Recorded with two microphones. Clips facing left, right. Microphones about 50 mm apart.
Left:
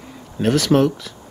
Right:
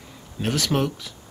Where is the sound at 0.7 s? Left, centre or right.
Left.